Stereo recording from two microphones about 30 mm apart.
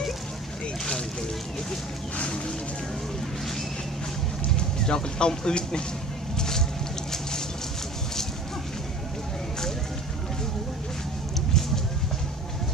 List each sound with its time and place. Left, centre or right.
4.6 s speech: left
6.3 s vehicle: left